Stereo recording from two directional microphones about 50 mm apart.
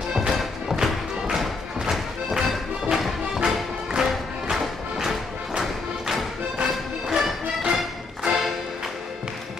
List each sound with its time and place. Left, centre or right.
0.3 s music: centre
3.3 s music: centre
4.0 s music: centre